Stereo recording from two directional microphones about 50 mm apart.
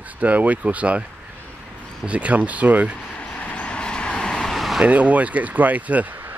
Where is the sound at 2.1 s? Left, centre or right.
Right.